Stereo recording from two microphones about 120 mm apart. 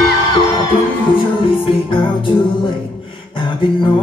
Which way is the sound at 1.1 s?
45° left (ahead or behind).